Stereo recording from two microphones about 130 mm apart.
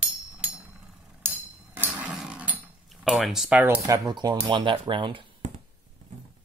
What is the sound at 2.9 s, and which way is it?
Speech, 5° right (ahead or behind).